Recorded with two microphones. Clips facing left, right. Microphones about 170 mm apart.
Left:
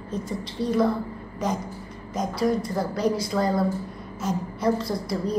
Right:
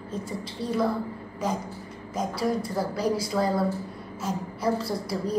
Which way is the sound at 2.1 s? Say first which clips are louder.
Left 3 dB; 5° right (ahead or behind).